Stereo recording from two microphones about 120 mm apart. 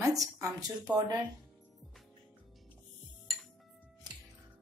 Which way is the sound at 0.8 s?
35° right (ahead or behind).